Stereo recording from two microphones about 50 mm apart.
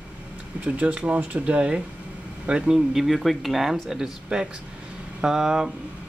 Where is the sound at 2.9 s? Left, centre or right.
Centre.